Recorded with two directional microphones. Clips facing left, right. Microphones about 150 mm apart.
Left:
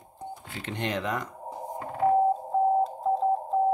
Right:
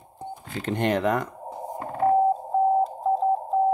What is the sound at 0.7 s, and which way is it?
Speech, 50° right (ahead or behind).